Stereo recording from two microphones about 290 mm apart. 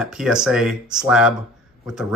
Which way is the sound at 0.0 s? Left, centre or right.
Centre.